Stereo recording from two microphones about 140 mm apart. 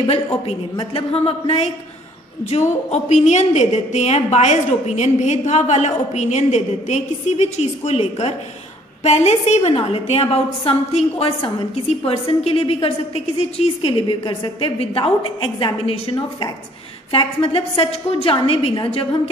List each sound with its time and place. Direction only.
0.5 s a woman's voice: 40° left (ahead or behind)
2.9 s a woman's voice: 55° left (ahead or behind); by 19.0 s 40° left (ahead or behind)